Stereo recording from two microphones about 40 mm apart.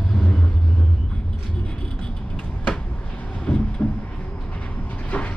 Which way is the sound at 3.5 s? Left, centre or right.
Left.